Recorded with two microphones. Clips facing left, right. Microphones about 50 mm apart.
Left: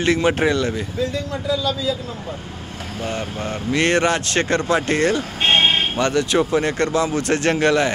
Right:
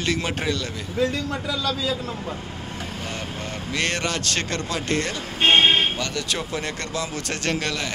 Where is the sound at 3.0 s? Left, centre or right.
Left.